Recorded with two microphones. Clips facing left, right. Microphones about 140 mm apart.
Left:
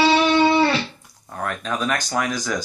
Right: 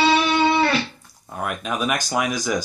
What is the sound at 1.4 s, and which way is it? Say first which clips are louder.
Speech: even; 10° right (ahead or behind).